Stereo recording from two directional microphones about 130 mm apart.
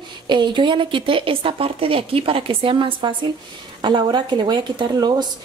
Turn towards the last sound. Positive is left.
turn(degrees=-35)  # may be behind; listen again after turning